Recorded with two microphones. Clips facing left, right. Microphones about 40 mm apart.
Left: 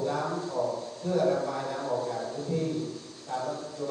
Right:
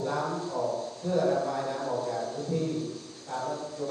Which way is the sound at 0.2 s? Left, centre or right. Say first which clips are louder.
Even; left.